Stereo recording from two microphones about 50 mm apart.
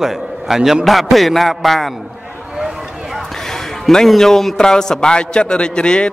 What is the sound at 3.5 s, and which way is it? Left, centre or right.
A man's voice, centre.